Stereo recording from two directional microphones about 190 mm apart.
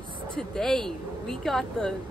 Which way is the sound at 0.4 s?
5° left (ahead or behind).